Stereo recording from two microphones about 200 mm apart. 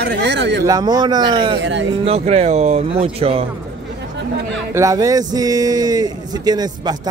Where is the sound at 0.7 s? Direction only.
20° right (ahead or behind).